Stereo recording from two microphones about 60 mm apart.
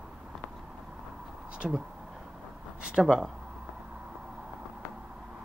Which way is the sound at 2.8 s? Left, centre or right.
Centre.